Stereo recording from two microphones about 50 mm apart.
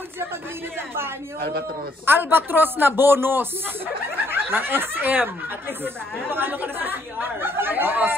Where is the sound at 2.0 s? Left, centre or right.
Right.